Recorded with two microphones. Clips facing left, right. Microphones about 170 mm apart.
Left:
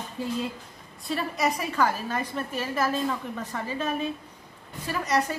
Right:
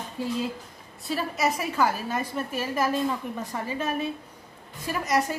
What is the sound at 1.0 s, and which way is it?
A woman's voice, 5° right (ahead or behind).